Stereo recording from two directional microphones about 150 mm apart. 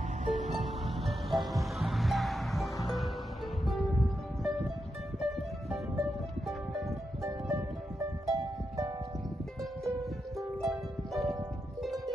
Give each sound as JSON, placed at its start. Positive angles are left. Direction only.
{"t": 0.2, "sound": "music", "side_deg": -55}
{"t": 0.6, "sound": "music", "side_deg": 0}
{"t": 4.4, "sound": "music", "side_deg": 0}
{"t": 7.5, "sound": "music", "side_deg": -20}
{"t": 10.3, "sound": "music", "side_deg": 0}